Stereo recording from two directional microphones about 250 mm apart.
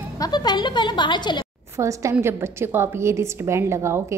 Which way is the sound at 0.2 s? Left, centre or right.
Centre.